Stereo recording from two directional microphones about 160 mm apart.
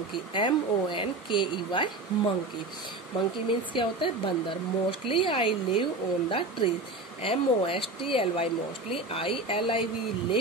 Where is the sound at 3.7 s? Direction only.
30° left (ahead or behind).